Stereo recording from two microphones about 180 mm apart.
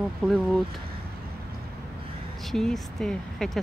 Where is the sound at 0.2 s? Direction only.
Centre (ahead or behind).